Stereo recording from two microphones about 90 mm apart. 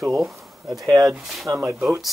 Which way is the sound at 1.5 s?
30° right (ahead or behind).